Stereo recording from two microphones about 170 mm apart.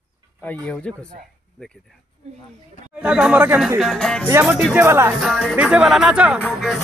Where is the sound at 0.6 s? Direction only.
5° left (ahead or behind).